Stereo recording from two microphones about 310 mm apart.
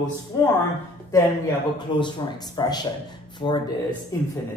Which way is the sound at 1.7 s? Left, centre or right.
Centre.